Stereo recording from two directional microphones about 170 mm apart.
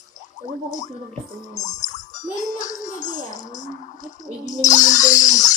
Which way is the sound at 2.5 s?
45° left (ahead or behind).